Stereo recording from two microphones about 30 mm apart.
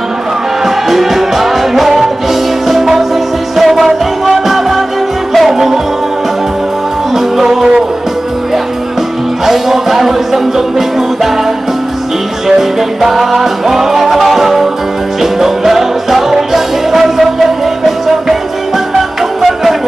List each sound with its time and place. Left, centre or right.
0.7 s music: centre
7.4 s music: right
9.5 s music: centre
12.4 s music: centre